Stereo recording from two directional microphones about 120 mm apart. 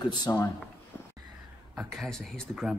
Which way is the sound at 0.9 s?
15° left (ahead or behind).